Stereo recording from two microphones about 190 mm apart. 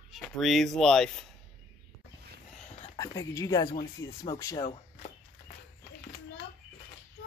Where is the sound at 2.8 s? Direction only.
20° left (ahead or behind).